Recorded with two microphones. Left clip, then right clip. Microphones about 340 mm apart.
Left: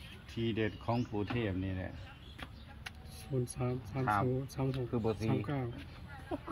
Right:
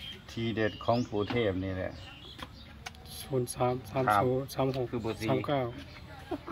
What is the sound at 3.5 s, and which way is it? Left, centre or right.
Speech, centre.